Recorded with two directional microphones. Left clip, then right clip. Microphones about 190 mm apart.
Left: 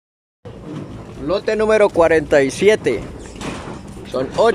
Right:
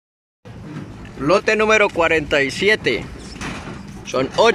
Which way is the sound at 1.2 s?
5° right (ahead or behind).